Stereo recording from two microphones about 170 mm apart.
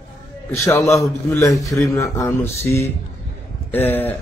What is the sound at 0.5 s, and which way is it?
A man's voice, 15° left (ahead or behind).